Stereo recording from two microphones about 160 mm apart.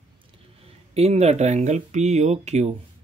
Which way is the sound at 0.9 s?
40° right (ahead or behind).